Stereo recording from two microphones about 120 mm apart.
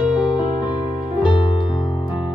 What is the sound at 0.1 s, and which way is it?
Music, 40° left (ahead or behind).